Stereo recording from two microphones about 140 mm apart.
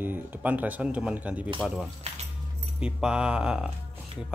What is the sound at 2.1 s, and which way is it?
Speech, 50° right (ahead or behind).